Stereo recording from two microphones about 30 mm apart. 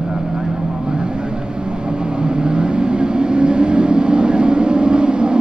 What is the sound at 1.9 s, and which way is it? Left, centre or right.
Vehicle, right.